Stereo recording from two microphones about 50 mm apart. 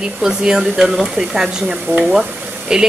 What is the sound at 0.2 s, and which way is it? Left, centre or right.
Speech, centre.